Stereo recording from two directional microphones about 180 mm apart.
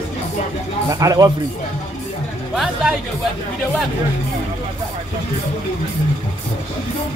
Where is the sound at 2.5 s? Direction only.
Centre (ahead or behind).